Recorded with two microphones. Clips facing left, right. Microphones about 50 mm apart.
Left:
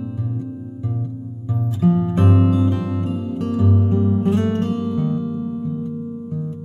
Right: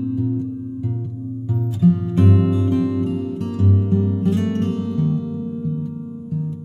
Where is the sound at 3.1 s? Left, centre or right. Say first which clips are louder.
Right 1 dB; centre.